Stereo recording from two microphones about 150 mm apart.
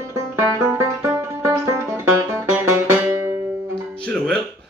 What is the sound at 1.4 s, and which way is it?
Music, 20° right (ahead or behind).